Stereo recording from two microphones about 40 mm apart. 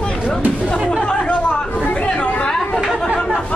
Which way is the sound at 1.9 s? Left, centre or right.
Left.